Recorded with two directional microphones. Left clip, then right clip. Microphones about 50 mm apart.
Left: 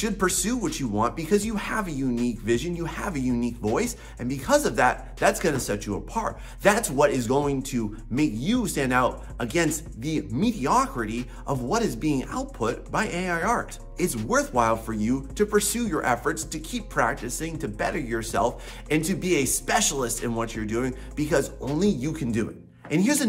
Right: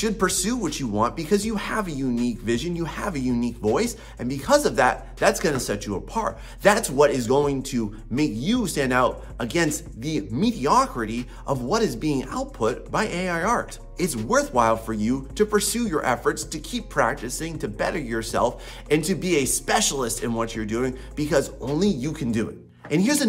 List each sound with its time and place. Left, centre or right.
0.0 s speech: right